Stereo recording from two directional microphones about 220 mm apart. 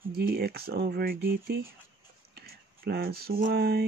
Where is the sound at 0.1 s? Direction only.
45° right (ahead or behind).